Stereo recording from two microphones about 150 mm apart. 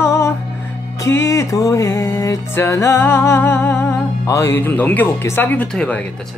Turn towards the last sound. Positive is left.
turn(degrees=5)  # may be behind; listen again after turning